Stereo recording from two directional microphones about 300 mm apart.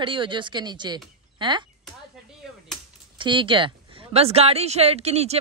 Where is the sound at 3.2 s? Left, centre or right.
Centre.